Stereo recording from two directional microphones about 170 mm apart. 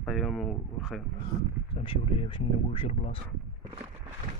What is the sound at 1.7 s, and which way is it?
Speech, 30° left (ahead or behind).